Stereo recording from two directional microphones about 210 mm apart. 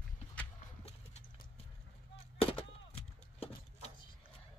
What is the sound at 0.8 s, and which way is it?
Clip-clop, 30° left (ahead or behind).